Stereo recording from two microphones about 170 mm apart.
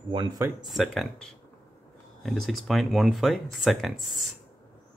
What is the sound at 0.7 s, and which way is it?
Speech, centre (ahead or behind).